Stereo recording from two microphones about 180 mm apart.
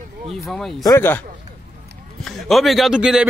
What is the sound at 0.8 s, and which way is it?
Speech, 15° left (ahead or behind).